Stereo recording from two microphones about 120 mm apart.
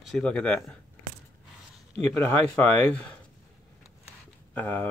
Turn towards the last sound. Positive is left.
turn(degrees=15)  # may be behind; listen again after turning